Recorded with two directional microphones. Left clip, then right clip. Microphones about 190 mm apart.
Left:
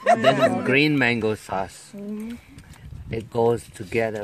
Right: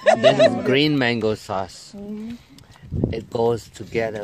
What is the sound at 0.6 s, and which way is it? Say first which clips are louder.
Speech: right 1 dB; 15° right (ahead or behind).